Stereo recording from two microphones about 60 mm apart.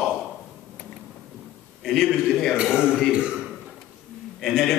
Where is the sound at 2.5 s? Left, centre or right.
Centre.